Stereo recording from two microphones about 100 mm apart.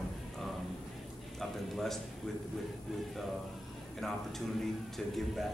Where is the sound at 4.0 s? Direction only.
5° left (ahead or behind).